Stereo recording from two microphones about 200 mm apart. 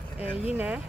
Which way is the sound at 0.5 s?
5° right (ahead or behind).